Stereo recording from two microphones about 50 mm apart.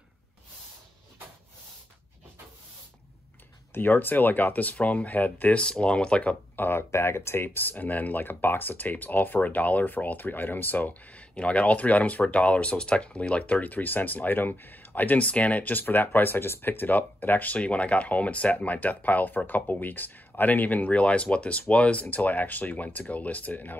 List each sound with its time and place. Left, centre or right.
3.7 s speech: left
5.6 s speech: left
6.5 s speech: left
6.9 s speech: left